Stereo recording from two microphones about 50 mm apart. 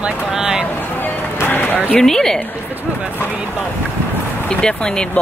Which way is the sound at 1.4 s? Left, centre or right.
Left.